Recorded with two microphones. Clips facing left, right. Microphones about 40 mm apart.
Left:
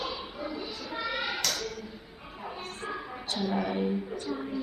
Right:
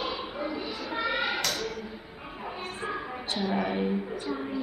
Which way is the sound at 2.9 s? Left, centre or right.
Centre.